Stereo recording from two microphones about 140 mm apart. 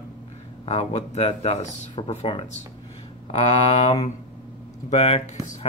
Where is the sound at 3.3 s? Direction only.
50° left (ahead or behind).